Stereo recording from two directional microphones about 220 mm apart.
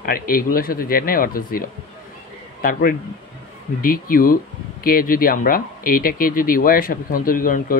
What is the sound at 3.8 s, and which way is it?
Speech, 40° left (ahead or behind).